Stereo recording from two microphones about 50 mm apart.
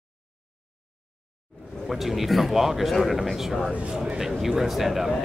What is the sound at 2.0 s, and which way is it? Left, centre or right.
Speech, centre.